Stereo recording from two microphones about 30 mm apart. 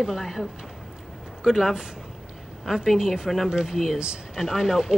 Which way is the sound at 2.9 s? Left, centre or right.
Centre.